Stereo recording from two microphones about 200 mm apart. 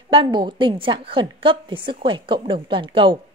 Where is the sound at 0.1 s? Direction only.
25° right (ahead or behind).